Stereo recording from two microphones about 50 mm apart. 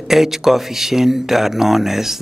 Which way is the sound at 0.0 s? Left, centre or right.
Centre.